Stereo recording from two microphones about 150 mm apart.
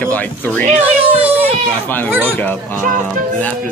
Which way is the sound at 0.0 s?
10° left (ahead or behind).